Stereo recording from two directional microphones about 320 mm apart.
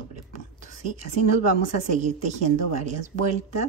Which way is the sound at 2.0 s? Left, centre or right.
Right.